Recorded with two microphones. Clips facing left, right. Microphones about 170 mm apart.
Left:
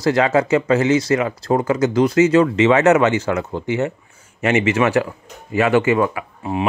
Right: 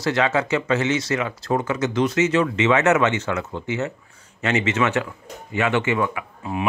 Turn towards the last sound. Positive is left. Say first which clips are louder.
# left 4 dB
turn(degrees=30)  # may be behind; listen again after turning